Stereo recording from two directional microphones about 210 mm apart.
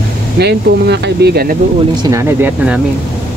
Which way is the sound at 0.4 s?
50° right (ahead or behind).